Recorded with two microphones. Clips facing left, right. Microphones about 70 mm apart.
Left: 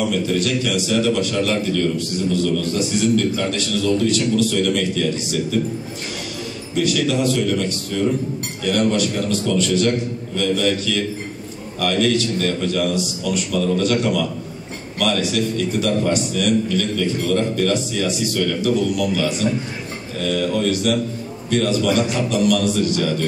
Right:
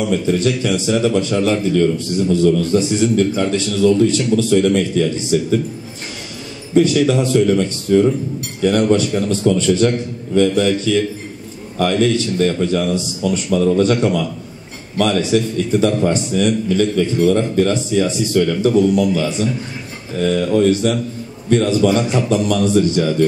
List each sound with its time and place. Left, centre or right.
0.1 s a man's voice: right
6.7 s a man's voice: right